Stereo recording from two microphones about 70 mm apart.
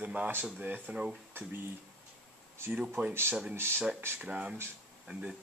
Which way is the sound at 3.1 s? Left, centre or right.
Right.